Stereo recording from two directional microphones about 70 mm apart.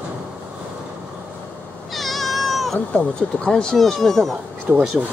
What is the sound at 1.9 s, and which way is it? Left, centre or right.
Cat, centre.